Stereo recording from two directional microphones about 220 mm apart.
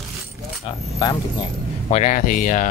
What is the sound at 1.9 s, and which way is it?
Speech, 35° left (ahead or behind).